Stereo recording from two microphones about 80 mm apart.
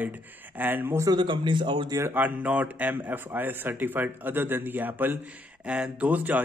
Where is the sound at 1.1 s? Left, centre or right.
Right.